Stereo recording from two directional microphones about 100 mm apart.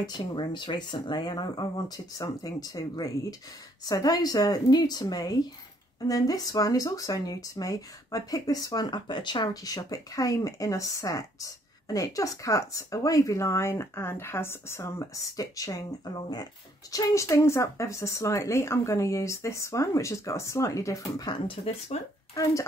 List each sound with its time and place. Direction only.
0.0 s speech: 50° left (ahead or behind)
16.9 s speech: 30° left (ahead or behind)
21.6 s speech: 90° left
22.3 s speech: 35° left (ahead or behind)